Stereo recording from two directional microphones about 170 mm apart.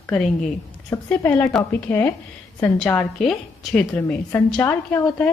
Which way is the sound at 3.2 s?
Centre (ahead or behind).